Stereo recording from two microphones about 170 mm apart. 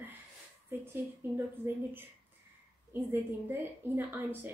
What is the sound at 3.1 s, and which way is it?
Speech, 10° right (ahead or behind).